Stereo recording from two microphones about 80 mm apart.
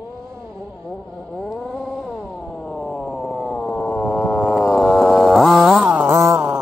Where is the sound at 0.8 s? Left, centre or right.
Centre.